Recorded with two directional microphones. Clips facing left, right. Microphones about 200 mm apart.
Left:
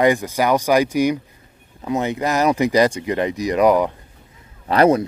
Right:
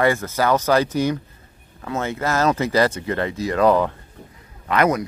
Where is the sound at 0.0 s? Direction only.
15° left (ahead or behind).